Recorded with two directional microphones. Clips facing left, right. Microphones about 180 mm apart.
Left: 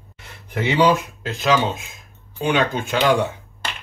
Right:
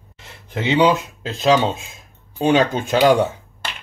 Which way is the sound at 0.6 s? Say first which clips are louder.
Right 1 dB; 20° right (ahead or behind).